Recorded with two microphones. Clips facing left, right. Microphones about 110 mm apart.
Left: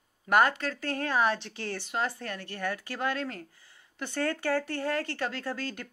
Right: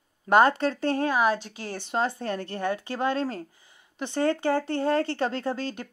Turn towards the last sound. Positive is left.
turn(degrees=-20)  # may be behind; listen again after turning